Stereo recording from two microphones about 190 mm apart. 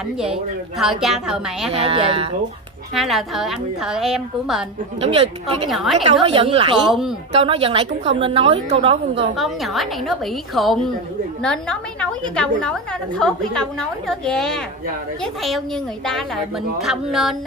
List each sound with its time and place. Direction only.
0.2 s a woman's voice: centre (ahead or behind)
1.8 s speech: 30° right (ahead or behind)
2.9 s a woman's voice: centre (ahead or behind)
5.0 s a woman's voice: 30° right (ahead or behind)
5.7 s a woman's voice: centre (ahead or behind)
6.2 s a woman's voice: 30° right (ahead or behind)
6.9 s a woman's voice: centre (ahead or behind)
7.3 s a woman's voice: 30° right (ahead or behind)
9.4 s a woman's voice: centre (ahead or behind)
16.8 s a woman's voice: centre (ahead or behind)